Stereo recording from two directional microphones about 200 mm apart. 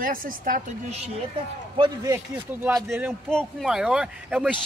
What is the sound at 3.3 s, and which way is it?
Speech, centre (ahead or behind).